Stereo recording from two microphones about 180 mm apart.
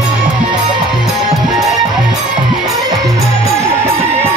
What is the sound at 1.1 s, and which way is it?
Music, centre (ahead or behind).